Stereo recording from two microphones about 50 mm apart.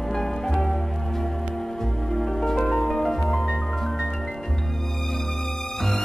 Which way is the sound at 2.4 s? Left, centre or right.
Centre.